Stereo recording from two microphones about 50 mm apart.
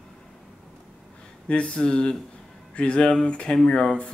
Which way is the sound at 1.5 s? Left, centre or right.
Left.